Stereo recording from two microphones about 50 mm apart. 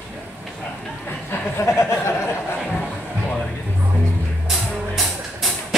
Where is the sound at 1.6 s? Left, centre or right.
Left.